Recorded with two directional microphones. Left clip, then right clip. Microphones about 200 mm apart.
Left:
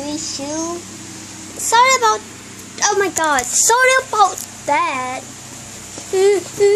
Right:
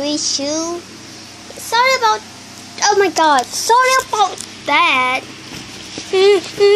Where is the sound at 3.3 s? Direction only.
Centre (ahead or behind).